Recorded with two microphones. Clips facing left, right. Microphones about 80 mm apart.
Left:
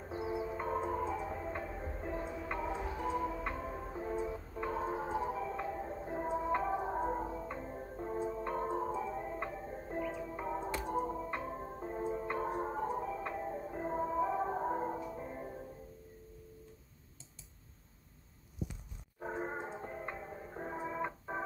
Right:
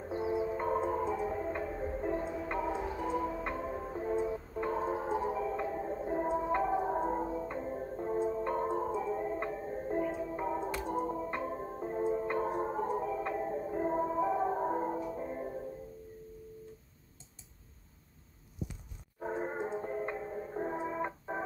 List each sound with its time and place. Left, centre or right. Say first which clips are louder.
0.1 s music: right 5 dB; centre
9.6 s music: right 6 dB; centre
10.1 s music: right 4 dB; centre
11.1 s music: right 3 dB; centre
19.1 s music: right 4 dB; centre